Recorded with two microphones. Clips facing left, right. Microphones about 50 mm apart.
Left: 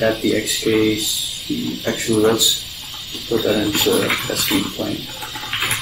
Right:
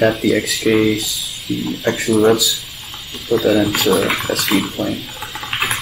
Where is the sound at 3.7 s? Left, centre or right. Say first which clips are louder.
Right 2 dB; centre.